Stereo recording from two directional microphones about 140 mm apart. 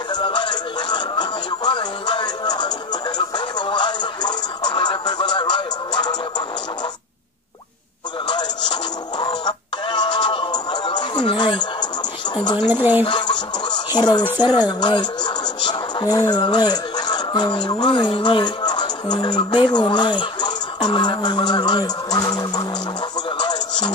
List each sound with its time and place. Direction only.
0.1 s music: 35° left (ahead or behind)
8.3 s television: 30° left (ahead or behind)
9.2 s music: 30° left (ahead or behind)
12.4 s a sound: 30° left (ahead or behind)
12.6 s speech: 15° right (ahead or behind)
13.0 s a sound: 30° left (ahead or behind)
14.7 s music: 30° left (ahead or behind)
17.6 s speech: 35° left (ahead or behind)
23.3 s music: 30° left (ahead or behind)